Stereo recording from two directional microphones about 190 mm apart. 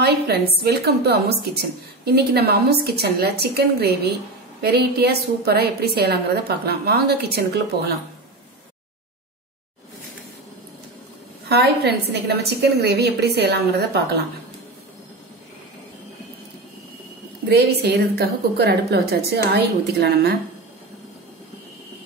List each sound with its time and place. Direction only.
0.0 s a woman's voice: 55° right (ahead or behind)
11.4 s a woman's voice: 60° right (ahead or behind)
17.5 s a woman's voice: 55° right (ahead or behind)